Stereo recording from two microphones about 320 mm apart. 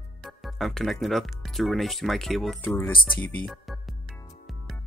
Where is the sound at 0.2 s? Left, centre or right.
Centre.